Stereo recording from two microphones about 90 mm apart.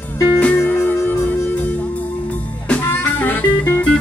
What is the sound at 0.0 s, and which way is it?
Music, 20° left (ahead or behind).